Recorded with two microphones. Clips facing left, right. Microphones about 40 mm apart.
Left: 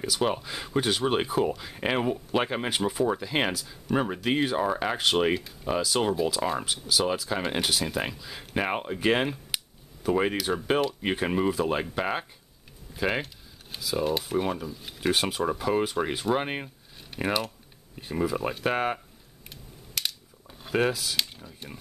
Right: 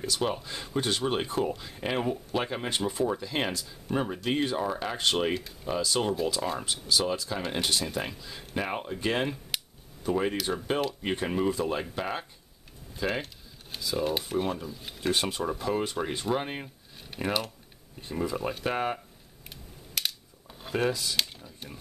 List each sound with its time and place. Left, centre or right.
0.2 s speech: centre
2.7 s speech: centre
3.1 s speech: centre
4.9 s speech: centre
7.2 s speech: centre
7.6 s speech: centre
8.4 s speech: left
9.5 s a sound: centre
10.3 s speech: centre
13.7 s speech: centre
15.0 s speech: centre
16.3 s speech: left
19.5 s a sound: centre
20.9 s speech: centre